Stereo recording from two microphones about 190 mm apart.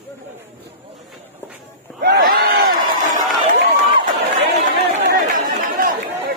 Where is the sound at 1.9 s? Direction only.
50° right (ahead or behind).